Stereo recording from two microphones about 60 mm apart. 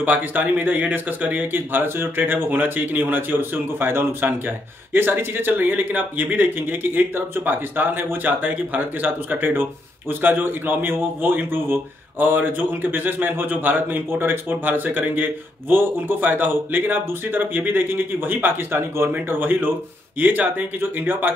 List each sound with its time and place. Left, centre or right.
0.0 s speech: right